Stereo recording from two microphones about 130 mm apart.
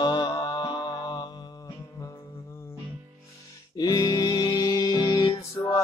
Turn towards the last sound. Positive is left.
turn(degrees=30)  # may be behind; listen again after turning